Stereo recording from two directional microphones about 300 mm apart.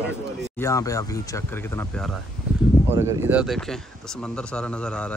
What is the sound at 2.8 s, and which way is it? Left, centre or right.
Speech, centre.